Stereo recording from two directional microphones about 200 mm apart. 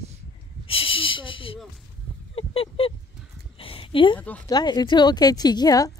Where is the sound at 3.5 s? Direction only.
25° left (ahead or behind).